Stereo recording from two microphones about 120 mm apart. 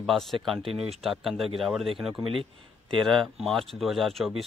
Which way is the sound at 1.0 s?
Centre (ahead or behind).